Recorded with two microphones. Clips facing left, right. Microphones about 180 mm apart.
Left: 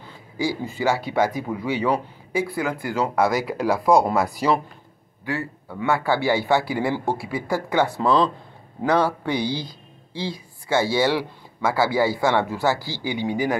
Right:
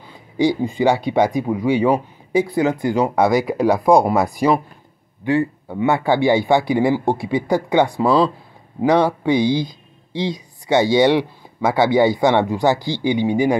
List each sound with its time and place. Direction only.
0.0 s a woman's voice: 15° right (ahead or behind)